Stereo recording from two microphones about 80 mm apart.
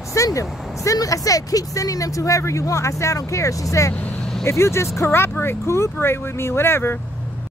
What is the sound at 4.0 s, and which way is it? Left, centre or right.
Vehicle, centre.